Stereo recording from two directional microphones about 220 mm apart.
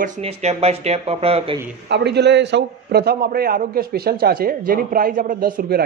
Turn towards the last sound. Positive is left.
turn(degrees=-45)  # may be behind; listen again after turning